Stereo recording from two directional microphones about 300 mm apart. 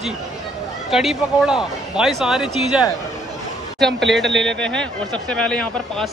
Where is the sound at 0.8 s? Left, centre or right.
Centre.